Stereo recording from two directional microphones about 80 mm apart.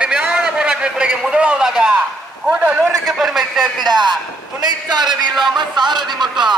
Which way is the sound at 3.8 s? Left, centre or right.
Right.